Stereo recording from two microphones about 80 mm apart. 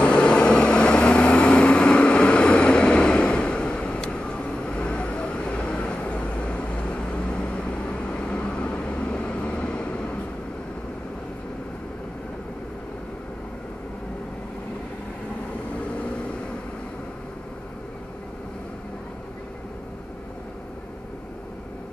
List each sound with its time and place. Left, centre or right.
0.0 s vehicle: centre
15.9 s vehicle: centre